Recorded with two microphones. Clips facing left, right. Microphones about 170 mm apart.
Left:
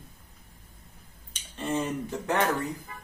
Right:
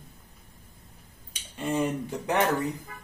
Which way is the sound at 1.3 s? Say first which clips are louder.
Right 1 dB; 10° right (ahead or behind).